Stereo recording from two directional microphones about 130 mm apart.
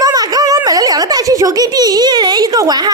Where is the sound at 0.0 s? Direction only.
30° right (ahead or behind).